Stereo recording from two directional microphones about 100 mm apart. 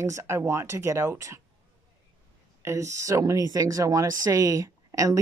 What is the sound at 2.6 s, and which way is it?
A woman's voice, 30° right (ahead or behind).